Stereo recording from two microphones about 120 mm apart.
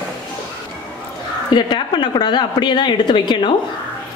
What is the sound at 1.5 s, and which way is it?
A woman's voice, 40° left (ahead or behind).